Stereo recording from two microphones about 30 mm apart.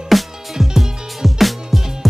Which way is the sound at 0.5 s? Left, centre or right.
Centre.